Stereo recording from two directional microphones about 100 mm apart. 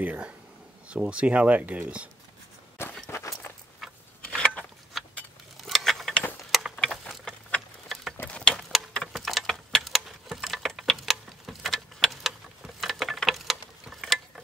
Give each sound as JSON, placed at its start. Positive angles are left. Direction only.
{"t": 0.0, "sound": "speech", "side_deg": -15}
{"t": 3.1, "sound": "walk", "side_deg": 25}
{"t": 3.8, "sound": "a sound", "side_deg": 0}
{"t": 5.6, "sound": "mechanisms", "side_deg": 0}
{"t": 6.5, "sound": "a sound", "side_deg": 0}
{"t": 8.9, "sound": "mechanisms", "side_deg": 0}